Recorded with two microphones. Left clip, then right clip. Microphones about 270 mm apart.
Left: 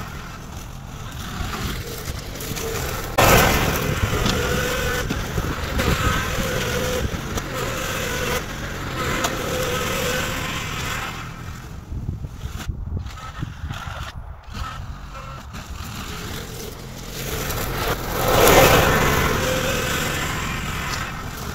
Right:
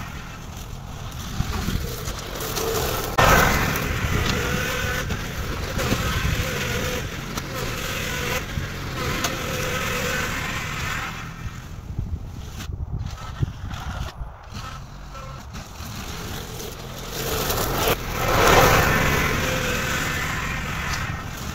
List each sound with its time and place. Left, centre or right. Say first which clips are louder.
1.2 s boat: left 2 dB; centre
2.3 s a sound: right 3 dB; centre
3.2 s vehicle: left 2 dB; left; by 5.5 s centre
5.6 s vehicle: left 2 dB; centre; by 11.2 s left
17.2 s a sound: right 3 dB; right
18.3 s vehicle: left 2 dB; left